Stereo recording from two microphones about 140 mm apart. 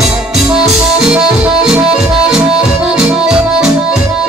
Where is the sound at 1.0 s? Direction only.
5° right (ahead or behind).